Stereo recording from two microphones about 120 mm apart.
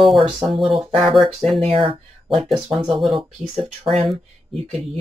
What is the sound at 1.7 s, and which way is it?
Speech, 45° right (ahead or behind).